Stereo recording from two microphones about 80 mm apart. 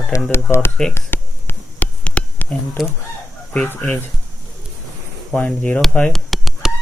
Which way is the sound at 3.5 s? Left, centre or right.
Centre.